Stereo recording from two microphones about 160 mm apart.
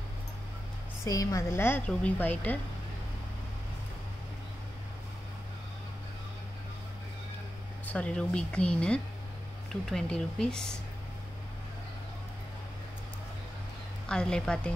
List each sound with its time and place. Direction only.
1.0 s a woman's voice: 20° left (ahead or behind)
7.8 s speech: 10° left (ahead or behind)
14.0 s speech: 5° left (ahead or behind)